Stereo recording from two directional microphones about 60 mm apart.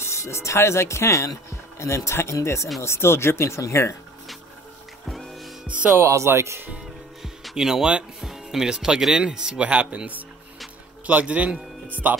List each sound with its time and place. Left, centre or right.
0.0 s speech: left
5.0 s music: centre
6.0 s speech: right
7.2 s a man's voice: centre; by 12.2 s right